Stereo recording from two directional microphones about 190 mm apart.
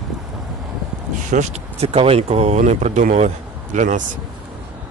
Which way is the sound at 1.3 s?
35° right (ahead or behind).